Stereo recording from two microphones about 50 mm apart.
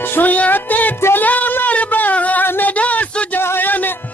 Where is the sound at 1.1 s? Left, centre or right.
Left.